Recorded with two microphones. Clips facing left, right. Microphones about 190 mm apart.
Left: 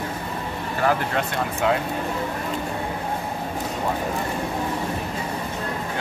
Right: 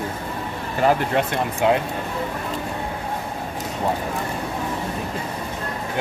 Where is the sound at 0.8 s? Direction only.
20° right (ahead or behind).